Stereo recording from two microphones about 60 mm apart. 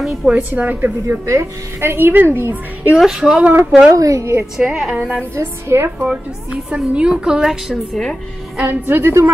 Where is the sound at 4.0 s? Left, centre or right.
Right.